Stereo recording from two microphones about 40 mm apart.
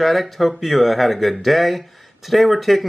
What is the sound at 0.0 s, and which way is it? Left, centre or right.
Speech, centre.